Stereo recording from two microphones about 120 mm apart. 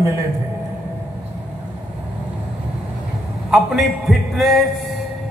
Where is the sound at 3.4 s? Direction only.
Centre (ahead or behind).